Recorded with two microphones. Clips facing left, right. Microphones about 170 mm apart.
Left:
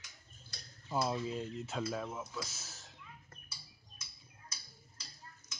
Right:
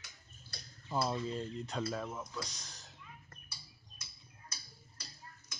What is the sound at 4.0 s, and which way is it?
Tick-tock, 60° right (ahead or behind).